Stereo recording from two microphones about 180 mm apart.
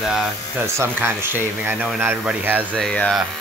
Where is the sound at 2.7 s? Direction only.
5° left (ahead or behind).